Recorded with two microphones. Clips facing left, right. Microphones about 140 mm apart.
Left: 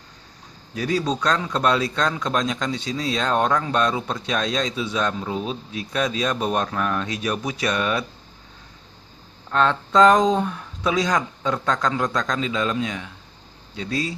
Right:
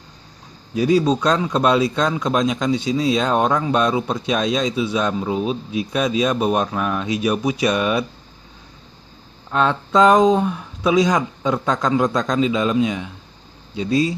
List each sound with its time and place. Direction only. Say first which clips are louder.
0.7 s speech: right 7 dB; 15° right (ahead or behind)
9.5 s speech: right 2 dB; 10° right (ahead or behind)